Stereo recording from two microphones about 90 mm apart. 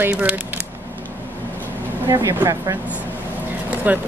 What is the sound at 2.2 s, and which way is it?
Speech, 40° right (ahead or behind).